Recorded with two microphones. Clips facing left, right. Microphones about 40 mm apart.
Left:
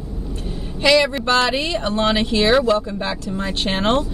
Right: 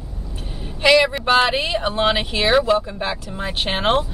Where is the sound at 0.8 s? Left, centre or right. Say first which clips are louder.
Right 1 dB; centre.